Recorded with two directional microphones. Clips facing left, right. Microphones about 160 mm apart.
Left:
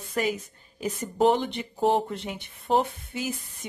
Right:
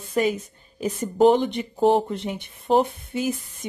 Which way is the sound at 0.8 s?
20° right (ahead or behind).